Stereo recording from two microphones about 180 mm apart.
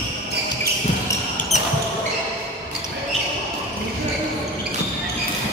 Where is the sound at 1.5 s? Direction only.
40° left (ahead or behind).